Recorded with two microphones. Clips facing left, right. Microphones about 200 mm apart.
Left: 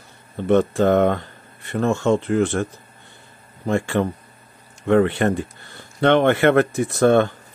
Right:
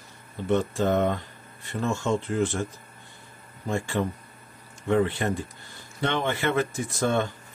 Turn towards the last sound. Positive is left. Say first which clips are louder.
# left 10 dB
turn(degrees=60)  # may be behind; listen again after turning